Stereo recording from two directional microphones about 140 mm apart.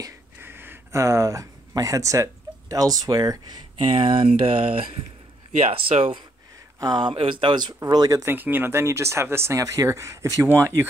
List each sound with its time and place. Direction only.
0.0 s a sound: 15° right (ahead or behind)
2.7 s speech: 25° right (ahead or behind); by 6.1 s 50° right (ahead or behind)
6.8 s speech: 30° right (ahead or behind)